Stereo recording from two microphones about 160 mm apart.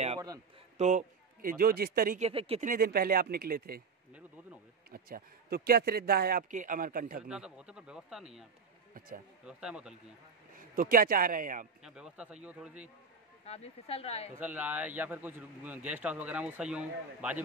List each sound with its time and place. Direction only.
0.7 s a man's voice: 50° right (ahead or behind); by 2.1 s 65° right (ahead or behind)
2.1 s speech: 40° right (ahead or behind)
2.6 s speech: 65° right (ahead or behind)
4.9 s speech: 70° right (ahead or behind)
6.5 s speech: 55° right (ahead or behind)
7.2 s speech: 5° right (ahead or behind)
9.5 s speech: 5° right (ahead or behind)
10.5 s a man's voice: 60° right (ahead or behind)
11.8 s a man's voice: 5° right (ahead or behind)
13.5 s speech: 40° left (ahead or behind)
14.4 s a man's voice: 10° right (ahead or behind)